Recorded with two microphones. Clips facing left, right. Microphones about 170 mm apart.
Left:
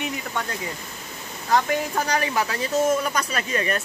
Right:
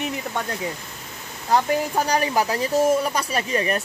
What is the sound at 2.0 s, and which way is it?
Speech, 35° right (ahead or behind).